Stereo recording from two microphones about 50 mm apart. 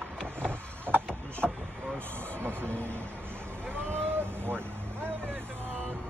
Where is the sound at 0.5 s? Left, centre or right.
Right.